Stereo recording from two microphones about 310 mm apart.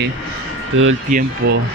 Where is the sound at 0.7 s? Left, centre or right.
Right.